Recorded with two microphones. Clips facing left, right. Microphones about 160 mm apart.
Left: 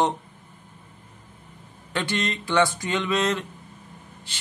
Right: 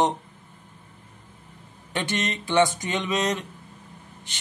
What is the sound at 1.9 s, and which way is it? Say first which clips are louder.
A man's voice: left 1 dB; 20° right (ahead or behind).